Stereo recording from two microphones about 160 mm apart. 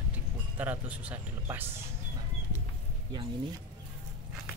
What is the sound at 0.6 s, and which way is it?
Speech, 10° right (ahead or behind).